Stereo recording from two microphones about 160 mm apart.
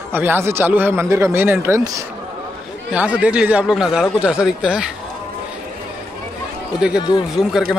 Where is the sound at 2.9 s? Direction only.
10° right (ahead or behind).